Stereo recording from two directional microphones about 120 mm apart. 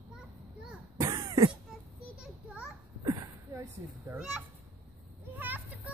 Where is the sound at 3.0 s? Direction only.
30° right (ahead or behind).